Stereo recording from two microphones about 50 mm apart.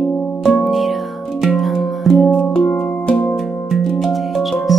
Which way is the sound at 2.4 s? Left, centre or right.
Left.